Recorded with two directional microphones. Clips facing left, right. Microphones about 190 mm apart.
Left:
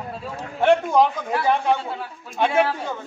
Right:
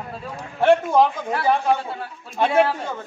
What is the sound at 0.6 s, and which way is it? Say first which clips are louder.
A man's voice: right 1 dB; centre (ahead or behind).